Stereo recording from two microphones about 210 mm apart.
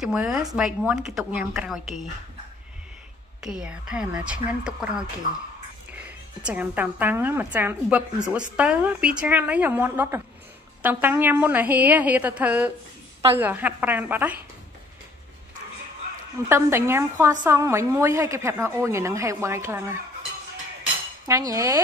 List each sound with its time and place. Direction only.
0.0 s a woman's voice: centre (ahead or behind)
3.3 s a woman's voice: 5° right (ahead or behind)
6.4 s a woman's voice: 5° right (ahead or behind)
16.4 s a woman's voice: 10° right (ahead or behind)
21.3 s a woman's voice: 15° right (ahead or behind)